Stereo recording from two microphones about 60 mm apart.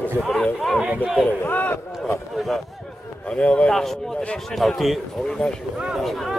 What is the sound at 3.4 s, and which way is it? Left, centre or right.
Speech, left.